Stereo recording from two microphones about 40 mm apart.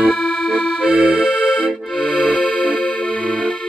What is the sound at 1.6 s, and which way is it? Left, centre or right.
Accordion, left.